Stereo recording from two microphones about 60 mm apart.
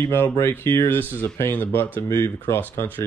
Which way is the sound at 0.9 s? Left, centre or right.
Left.